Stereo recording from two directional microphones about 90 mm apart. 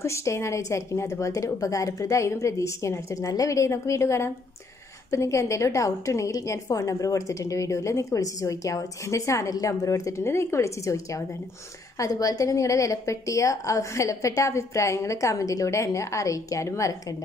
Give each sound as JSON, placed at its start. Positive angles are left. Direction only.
{"t": 0.0, "sound": "a woman's voice", "side_deg": 35}